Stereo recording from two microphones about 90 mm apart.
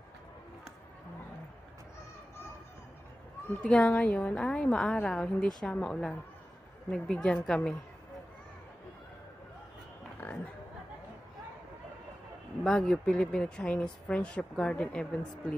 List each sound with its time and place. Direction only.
3.6 s speech: 15° left (ahead or behind)
10.2 s chatter: 20° left (ahead or behind)
12.6 s speech: 10° left (ahead or behind)